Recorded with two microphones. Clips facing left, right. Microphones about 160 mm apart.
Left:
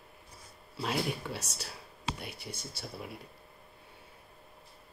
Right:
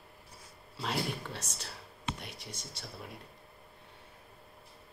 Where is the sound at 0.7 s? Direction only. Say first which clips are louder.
Left 2 dB; 5° left (ahead or behind).